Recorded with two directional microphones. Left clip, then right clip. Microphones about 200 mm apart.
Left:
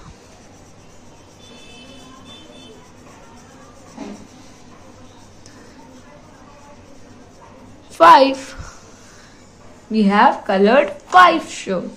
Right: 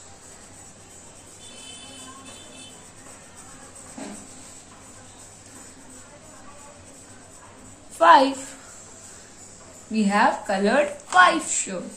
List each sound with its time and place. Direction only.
8.0 s a woman's voice: 50° left (ahead or behind)
9.9 s a woman's voice: 45° left (ahead or behind)